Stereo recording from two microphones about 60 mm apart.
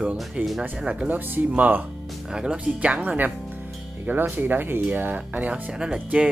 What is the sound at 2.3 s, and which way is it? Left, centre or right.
Speech, centre.